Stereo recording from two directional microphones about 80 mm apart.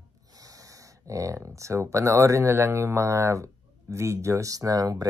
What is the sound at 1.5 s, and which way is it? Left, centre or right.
Speech, right.